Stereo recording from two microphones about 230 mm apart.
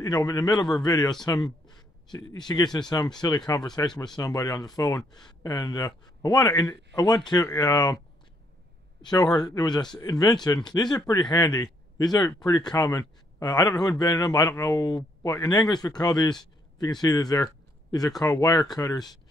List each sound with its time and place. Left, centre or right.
0.0 s speech: centre
9.0 s speech: centre